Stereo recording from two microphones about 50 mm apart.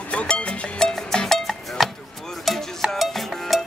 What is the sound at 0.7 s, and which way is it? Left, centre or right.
Music, centre.